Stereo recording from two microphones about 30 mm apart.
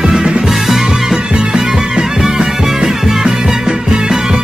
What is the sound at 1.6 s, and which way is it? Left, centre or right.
Music, centre.